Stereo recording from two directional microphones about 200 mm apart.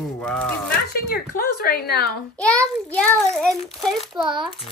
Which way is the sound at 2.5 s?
5° left (ahead or behind).